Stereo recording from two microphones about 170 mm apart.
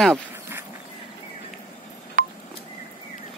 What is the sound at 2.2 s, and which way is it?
Telephone dialing, 50° right (ahead or behind).